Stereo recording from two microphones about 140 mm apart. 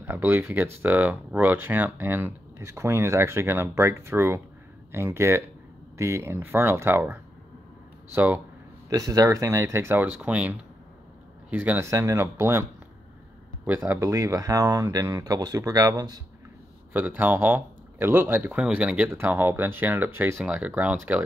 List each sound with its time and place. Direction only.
0.0 s speech: 15° right (ahead or behind)
8.9 s speech: 25° right (ahead or behind)
11.5 s speech: 10° right (ahead or behind)
13.7 s speech: 20° right (ahead or behind)
16.9 s speech: 10° right (ahead or behind)